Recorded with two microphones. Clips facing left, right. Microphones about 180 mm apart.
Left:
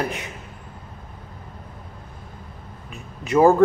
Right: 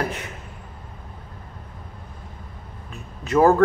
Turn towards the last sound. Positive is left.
turn(degrees=15)  # may be behind; listen again after turning